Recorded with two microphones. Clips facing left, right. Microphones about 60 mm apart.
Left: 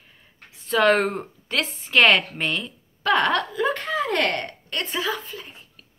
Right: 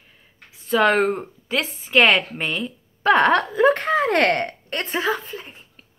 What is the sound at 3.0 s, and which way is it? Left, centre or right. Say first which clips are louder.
Speech: right 4 dB; right.